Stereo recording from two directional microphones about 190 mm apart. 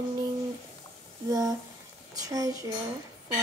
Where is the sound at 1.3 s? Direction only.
15° right (ahead or behind).